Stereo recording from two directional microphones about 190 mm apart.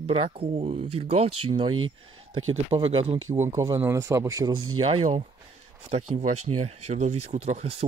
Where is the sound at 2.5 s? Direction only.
30° right (ahead or behind).